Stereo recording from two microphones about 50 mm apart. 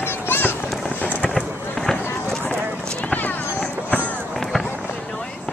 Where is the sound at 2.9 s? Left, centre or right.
Left.